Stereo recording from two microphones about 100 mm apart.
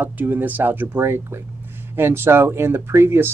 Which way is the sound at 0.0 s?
20° right (ahead or behind).